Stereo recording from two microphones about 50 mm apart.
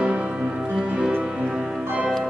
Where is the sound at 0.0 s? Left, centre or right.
Centre.